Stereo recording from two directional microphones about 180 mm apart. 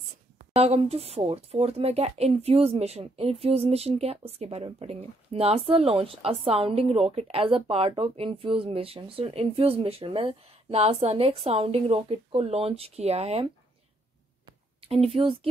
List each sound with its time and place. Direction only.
0.6 s speech: 35° right (ahead or behind)
14.9 s speech: 30° right (ahead or behind)